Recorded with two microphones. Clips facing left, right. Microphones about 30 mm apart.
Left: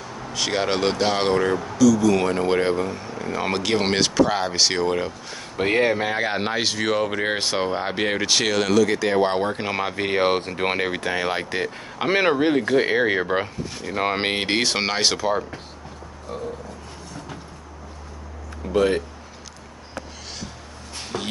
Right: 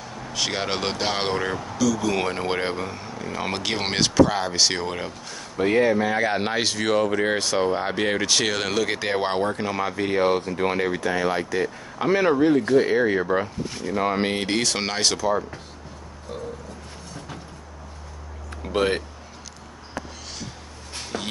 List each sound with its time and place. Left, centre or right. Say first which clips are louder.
0.3 s speech: left 3 dB; centre
1.8 s speech: left 6 dB; centre
3.2 s speech: left 3 dB; centre
5.6 s speech: even; left
6.1 s speech: right 1 dB; centre
7.1 s speech: right 1 dB; left
7.6 s speech: right 1 dB; centre
8.7 s speech: left 5 dB; centre
9.1 s speech: left 4 dB; centre
9.4 s speech: even; left
18.7 s speech: left 3 dB; right